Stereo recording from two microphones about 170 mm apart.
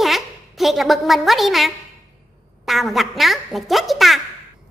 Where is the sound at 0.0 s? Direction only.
Centre (ahead or behind).